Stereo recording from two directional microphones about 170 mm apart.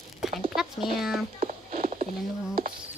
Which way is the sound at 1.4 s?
50° right (ahead or behind).